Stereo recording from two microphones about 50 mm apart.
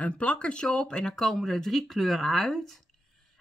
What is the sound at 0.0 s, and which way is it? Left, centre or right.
Speech, left.